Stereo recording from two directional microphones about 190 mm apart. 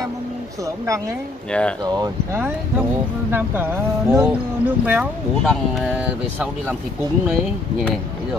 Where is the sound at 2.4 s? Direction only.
10° right (ahead or behind).